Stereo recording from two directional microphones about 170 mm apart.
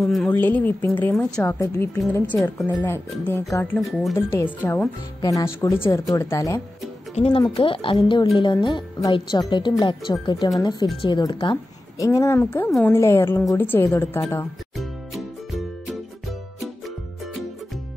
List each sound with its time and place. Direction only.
0.0 s a woman's voice: centre (ahead or behind)
4.6 s a woman's voice: 15° left (ahead or behind)
7.2 s a woman's voice: 35° left (ahead or behind); by 14.2 s 15° left (ahead or behind)
14.8 s music: centre (ahead or behind)